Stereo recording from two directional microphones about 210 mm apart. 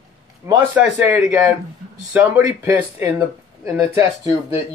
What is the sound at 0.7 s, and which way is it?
Speech, 10° right (ahead or behind).